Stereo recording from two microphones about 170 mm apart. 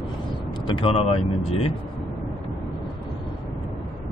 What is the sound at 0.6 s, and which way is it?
Speech, 30° left (ahead or behind).